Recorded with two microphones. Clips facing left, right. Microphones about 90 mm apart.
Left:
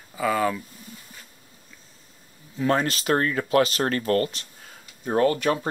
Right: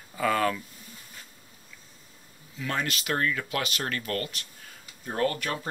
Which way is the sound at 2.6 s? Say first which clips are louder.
Left 8 dB; 35° left (ahead or behind).